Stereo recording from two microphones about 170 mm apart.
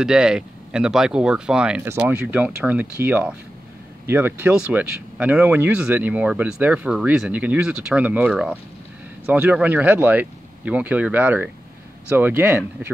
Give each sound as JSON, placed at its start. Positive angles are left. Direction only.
{"t": 0.0, "sound": "speech", "side_deg": -5}